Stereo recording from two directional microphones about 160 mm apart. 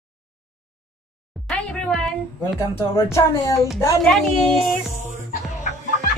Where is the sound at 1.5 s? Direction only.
5° left (ahead or behind).